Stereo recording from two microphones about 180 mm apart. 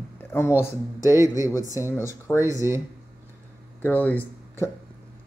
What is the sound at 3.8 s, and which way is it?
Speech, 10° left (ahead or behind).